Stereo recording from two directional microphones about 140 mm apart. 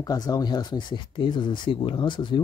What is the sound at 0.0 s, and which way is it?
Speech, 25° left (ahead or behind).